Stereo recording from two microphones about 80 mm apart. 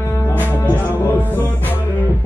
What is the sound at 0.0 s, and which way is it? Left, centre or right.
Music, left.